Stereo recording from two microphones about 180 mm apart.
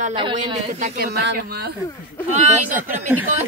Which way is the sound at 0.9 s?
60° right (ahead or behind).